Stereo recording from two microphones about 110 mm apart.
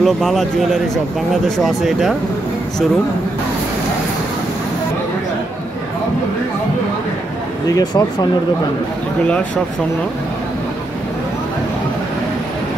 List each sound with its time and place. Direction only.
0.0 s speech: centre (ahead or behind)
7.6 s speech: 35° left (ahead or behind)